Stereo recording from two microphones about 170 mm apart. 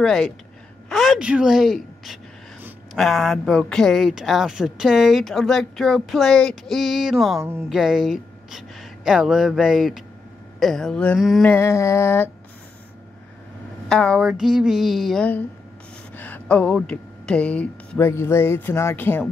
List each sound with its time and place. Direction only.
0.0 s a woman's voice: centre (ahead or behind)
11.4 s a sound: 15° left (ahead or behind)
13.8 s a woman's voice: 5° left (ahead or behind)